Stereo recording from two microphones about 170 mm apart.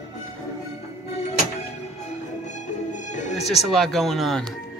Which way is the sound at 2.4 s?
45° left (ahead or behind).